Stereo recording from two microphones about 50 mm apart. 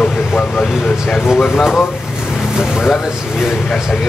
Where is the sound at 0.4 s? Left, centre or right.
Left.